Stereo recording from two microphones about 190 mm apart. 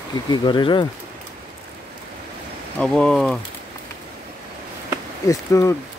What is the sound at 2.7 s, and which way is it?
Speech, 5° left (ahead or behind).